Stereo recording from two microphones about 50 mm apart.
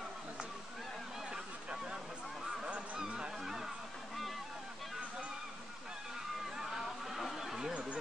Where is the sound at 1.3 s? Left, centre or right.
Centre.